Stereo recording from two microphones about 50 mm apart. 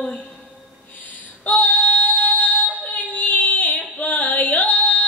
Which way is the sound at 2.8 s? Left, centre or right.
Left.